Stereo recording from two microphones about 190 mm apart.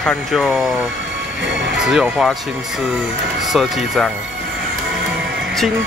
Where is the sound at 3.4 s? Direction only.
Centre (ahead or behind).